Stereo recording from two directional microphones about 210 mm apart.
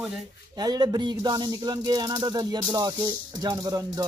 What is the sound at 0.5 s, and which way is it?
Speech, 20° right (ahead or behind).